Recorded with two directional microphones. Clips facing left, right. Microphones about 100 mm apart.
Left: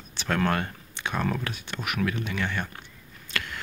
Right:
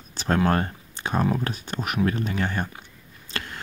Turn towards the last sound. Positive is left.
turn(degrees=-35)  # may be behind; listen again after turning